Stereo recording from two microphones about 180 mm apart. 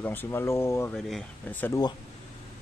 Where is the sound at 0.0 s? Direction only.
10° left (ahead or behind).